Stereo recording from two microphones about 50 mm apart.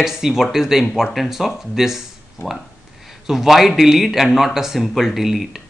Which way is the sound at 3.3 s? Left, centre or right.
Centre.